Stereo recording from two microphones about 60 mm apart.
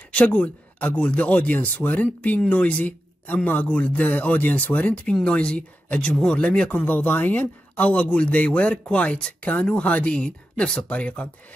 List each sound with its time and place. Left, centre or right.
0.1 s speech: left
5.0 s speech: centre